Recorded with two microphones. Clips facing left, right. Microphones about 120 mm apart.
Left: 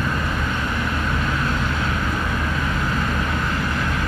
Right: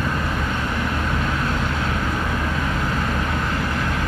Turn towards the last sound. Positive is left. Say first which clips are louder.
# even
turn(degrees=-35)  # may be behind; listen again after turning